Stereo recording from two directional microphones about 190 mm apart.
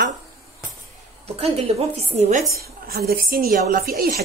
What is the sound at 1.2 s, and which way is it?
A woman's voice, 30° right (ahead or behind).